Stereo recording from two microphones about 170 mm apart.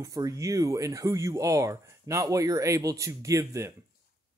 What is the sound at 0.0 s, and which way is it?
Speech, 20° right (ahead or behind).